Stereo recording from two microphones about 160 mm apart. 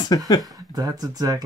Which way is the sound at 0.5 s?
25° right (ahead or behind).